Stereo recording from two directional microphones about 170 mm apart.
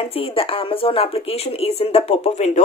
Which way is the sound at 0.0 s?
35° left (ahead or behind).